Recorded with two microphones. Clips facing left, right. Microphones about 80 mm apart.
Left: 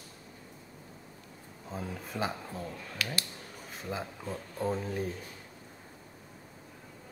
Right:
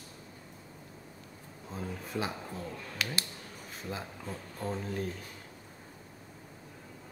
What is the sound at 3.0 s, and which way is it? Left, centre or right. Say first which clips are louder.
Speech: even; right.